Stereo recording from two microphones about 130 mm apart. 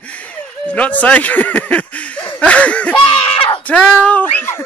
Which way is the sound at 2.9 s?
45° left (ahead or behind).